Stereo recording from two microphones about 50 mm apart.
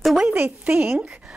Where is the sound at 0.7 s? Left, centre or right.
Right.